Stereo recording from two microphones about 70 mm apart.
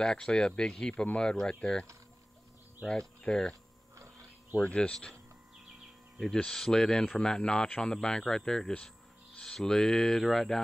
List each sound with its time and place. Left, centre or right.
0.0 s speech: centre
3.2 s speech: centre
4.6 s speech: centre
6.1 s speech: centre